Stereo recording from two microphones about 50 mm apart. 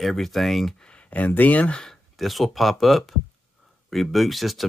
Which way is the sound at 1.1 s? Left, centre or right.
Left.